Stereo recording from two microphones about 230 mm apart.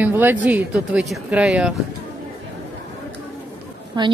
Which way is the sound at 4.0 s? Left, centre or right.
Centre.